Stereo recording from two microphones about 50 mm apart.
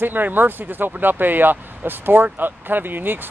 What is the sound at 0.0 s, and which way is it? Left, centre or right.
Speech, right.